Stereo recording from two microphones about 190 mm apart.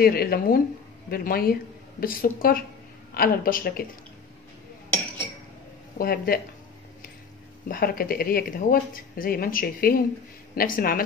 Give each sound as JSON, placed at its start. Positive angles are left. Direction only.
{"t": 0.0, "sound": "speech", "side_deg": 55}
{"t": 5.9, "sound": "speech", "side_deg": 50}
{"t": 7.6, "sound": "speech", "side_deg": 50}